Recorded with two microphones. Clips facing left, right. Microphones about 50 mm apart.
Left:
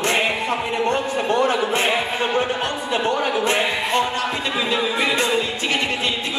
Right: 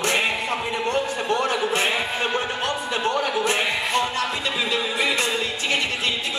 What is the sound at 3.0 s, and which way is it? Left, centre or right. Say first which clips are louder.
Music: left 3 dB; left.